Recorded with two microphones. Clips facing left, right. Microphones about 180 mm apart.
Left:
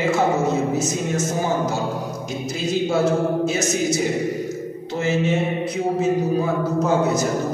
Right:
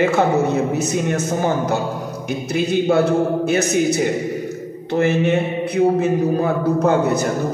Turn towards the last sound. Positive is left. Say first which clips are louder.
# right 3 dB
turn(degrees=-60)  # may be behind; listen again after turning